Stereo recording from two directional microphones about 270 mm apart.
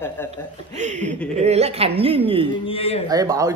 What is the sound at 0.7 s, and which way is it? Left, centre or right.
Speech, right.